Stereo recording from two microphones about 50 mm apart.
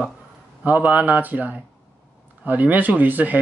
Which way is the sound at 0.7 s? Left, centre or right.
Right.